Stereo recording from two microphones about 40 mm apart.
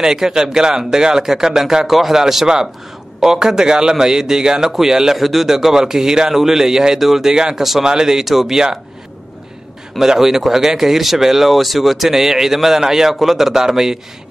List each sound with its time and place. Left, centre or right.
0.0 s a man's voice: centre
9.9 s a man's voice: centre